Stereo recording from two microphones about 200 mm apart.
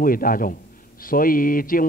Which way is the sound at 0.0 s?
45° left (ahead or behind).